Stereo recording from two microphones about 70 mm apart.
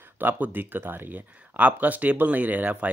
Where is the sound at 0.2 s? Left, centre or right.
Right.